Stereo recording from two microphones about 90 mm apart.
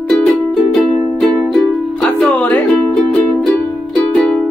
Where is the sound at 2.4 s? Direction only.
15° left (ahead or behind).